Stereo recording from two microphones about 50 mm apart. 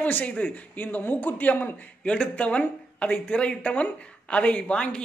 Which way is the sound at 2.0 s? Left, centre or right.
Left.